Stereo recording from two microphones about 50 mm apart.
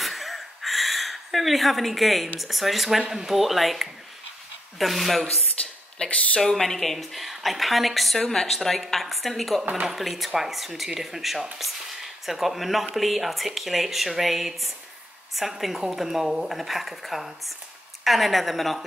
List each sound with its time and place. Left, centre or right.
0.0 s a sound: centre
3.1 s speech: centre
6.0 s speech: left
6.4 s speech: centre